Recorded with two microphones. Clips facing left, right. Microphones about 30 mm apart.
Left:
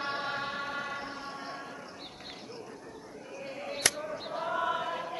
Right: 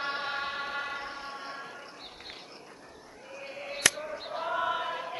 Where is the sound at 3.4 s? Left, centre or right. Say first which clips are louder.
Even; centre.